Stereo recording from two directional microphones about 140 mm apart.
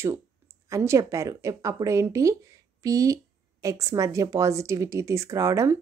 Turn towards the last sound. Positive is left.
turn(degrees=-20)  # may be behind; listen again after turning